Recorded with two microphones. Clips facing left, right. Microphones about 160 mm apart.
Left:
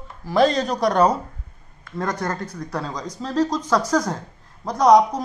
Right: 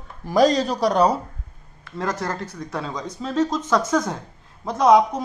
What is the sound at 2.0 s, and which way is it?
A man's voice, 5° right (ahead or behind).